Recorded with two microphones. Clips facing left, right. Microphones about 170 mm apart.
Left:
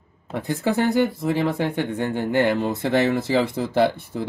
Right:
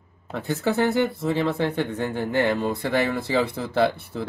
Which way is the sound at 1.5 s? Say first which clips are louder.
Left 1 dB; 15° left (ahead or behind).